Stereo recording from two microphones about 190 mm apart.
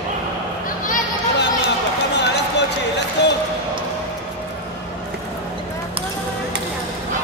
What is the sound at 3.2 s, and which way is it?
Basketball bounce, 65° left (ahead or behind).